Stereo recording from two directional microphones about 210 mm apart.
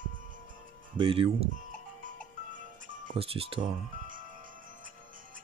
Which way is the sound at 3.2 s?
25° right (ahead or behind).